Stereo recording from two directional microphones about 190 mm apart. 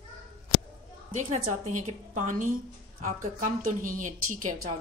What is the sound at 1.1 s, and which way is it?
A woman's voice, 40° right (ahead or behind).